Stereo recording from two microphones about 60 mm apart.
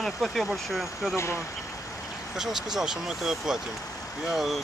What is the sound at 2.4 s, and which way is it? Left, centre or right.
Speech, centre.